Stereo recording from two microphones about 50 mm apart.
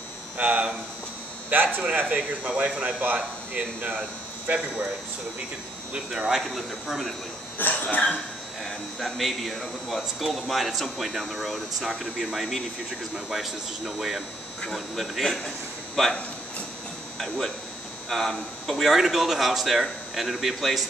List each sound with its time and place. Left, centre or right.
0.4 s speech: right
1.9 s speech: right
5.9 s speech: centre
6.4 s speech: centre
7.5 s cough: left
8.6 s speech: centre
18.1 s speech: centre
18.7 s speech: centre